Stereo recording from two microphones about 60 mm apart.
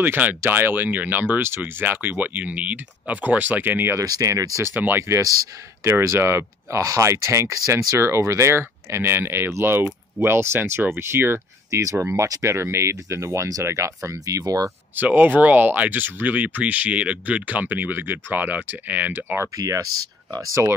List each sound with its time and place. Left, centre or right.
0.0 s speech: right
4.0 s speech: right
4.7 s speech: right
5.0 s speech: right
11.7 s speech: right
15.0 s speech: right
19.5 s speech: right
20.6 s speech: right